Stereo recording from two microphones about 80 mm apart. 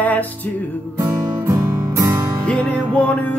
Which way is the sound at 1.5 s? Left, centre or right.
Right.